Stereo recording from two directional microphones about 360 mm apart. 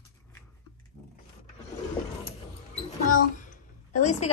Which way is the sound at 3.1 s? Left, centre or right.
Left.